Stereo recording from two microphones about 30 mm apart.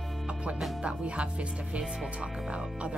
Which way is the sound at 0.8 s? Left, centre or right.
Right.